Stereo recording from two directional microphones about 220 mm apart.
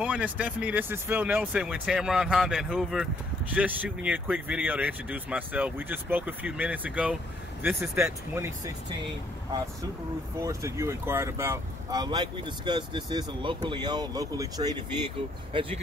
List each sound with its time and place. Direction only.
0.0 s speech: 5° right (ahead or behind)
10.4 s speech: 15° right (ahead or behind)